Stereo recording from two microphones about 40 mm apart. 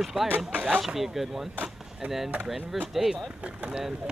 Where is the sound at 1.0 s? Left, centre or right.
Centre.